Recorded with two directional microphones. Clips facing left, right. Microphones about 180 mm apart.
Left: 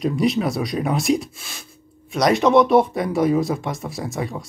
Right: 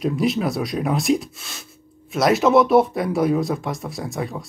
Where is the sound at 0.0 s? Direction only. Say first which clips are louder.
Left 1 dB; centre (ahead or behind).